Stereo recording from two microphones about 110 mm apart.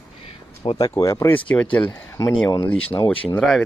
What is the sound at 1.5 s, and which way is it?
Speech, 10° left (ahead or behind).